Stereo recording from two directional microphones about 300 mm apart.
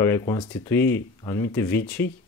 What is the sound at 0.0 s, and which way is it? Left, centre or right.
Speech, centre.